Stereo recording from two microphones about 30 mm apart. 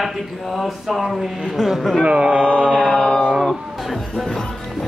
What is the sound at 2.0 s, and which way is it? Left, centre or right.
Chant, right.